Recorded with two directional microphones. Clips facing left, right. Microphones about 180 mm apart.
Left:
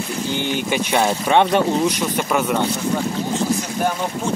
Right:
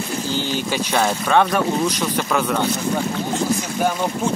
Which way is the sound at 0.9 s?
20° left (ahead or behind).